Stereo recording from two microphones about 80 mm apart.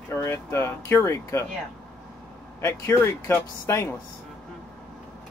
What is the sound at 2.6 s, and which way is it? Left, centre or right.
Speech, left.